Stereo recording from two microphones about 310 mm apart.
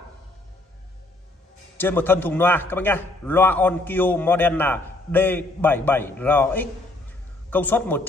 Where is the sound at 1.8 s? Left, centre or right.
Centre.